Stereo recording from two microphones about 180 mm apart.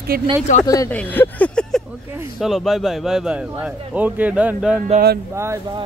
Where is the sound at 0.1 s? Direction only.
55° right (ahead or behind).